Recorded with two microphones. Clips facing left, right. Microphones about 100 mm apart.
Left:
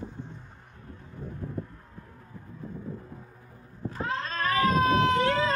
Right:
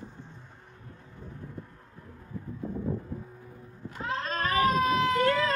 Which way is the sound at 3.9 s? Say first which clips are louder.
Left 2 dB; 35° left (ahead or behind).